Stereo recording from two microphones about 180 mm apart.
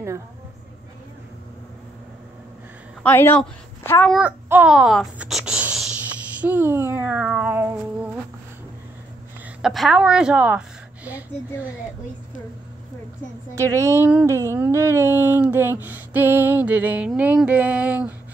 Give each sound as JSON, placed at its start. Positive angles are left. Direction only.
{"t": 3.0, "sound": "a woman's voice", "side_deg": 10}
{"t": 4.1, "sound": "speech", "side_deg": -10}
{"t": 6.4, "sound": "a sound", "side_deg": -10}
{"t": 9.6, "sound": "a woman's voice", "side_deg": 0}
{"t": 13.6, "sound": "speech", "side_deg": -15}